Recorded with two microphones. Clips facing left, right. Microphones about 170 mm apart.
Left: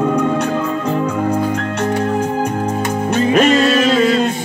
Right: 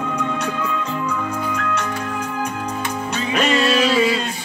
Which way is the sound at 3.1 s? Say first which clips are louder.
Left 8 dB; 50° left (ahead or behind).